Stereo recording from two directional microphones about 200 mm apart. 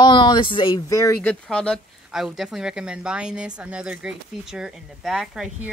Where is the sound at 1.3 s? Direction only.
5° left (ahead or behind).